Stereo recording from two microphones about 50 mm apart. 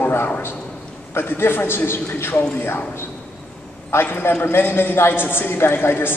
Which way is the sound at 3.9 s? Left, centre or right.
Left.